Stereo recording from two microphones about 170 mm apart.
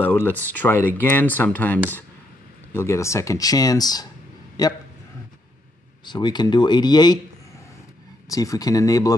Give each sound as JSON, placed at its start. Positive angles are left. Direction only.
{"t": 0.0, "sound": "speech", "side_deg": 10}
{"t": 6.0, "sound": "speech", "side_deg": 25}
{"t": 8.3, "sound": "speech", "side_deg": 20}